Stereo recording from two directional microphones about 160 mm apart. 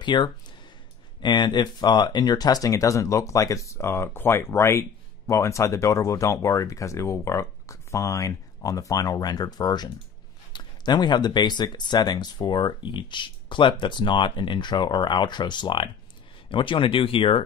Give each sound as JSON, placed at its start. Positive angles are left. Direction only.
{"t": 0.0, "sound": "speech", "side_deg": 30}